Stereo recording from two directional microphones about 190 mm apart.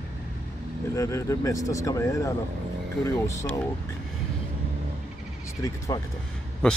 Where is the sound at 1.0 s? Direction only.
15° left (ahead or behind).